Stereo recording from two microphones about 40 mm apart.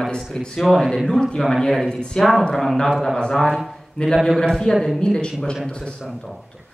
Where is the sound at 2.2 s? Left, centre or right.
Centre.